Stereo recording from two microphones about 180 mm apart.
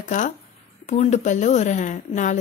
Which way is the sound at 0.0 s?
45° left (ahead or behind).